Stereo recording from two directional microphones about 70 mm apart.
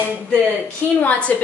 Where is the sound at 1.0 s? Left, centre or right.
Left.